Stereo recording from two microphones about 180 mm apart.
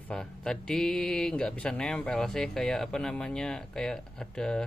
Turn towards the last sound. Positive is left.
turn(degrees=5)  # may be behind; listen again after turning